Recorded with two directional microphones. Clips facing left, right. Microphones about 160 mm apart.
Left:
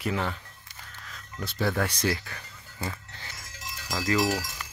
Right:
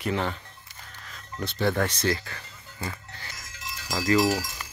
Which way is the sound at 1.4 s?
10° left (ahead or behind).